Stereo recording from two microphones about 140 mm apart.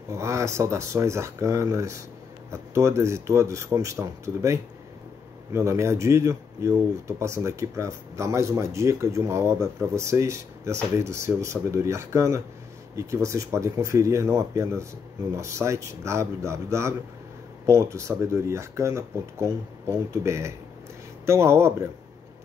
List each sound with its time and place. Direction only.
0.1 s speech: 20° right (ahead or behind)